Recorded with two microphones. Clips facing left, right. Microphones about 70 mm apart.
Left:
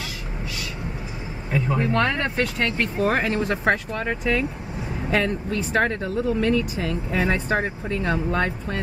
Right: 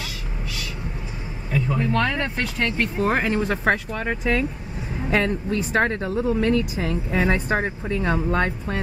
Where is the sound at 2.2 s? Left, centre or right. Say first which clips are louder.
Left 1 dB; centre.